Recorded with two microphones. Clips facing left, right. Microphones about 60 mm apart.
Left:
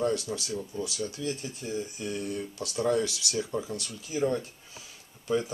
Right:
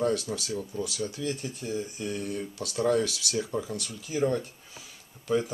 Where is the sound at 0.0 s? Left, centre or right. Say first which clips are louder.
Right 1 dB; right.